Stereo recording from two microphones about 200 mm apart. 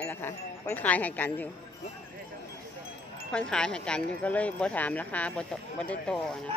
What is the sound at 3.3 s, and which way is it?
Speech, 5° left (ahead or behind).